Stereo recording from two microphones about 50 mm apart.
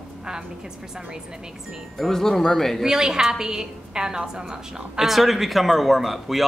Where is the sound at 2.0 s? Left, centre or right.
Centre.